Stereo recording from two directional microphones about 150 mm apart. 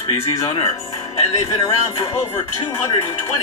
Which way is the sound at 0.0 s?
25° left (ahead or behind).